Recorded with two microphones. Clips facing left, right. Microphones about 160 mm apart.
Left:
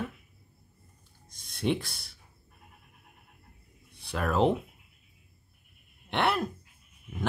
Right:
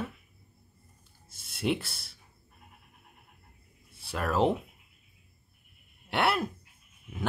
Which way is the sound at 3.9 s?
5° right (ahead or behind).